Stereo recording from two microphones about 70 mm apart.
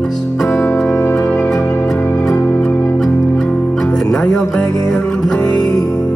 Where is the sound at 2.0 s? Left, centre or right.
Left.